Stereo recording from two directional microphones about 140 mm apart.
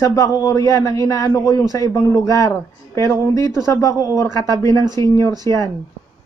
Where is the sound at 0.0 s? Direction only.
25° left (ahead or behind).